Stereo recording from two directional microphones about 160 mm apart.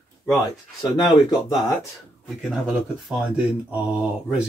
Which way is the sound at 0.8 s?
25° left (ahead or behind).